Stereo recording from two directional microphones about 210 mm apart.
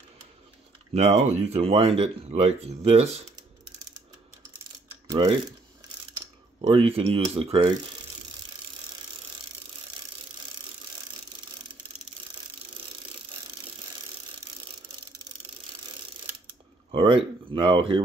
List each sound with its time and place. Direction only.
0.9 s speech: 30° right (ahead or behind)
5.1 s speech: 20° right (ahead or behind)
6.6 s speech: 30° right (ahead or behind)
16.9 s speech: 25° right (ahead or behind)